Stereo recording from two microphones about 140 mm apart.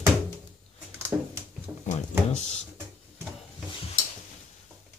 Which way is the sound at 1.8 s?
55° left (ahead or behind).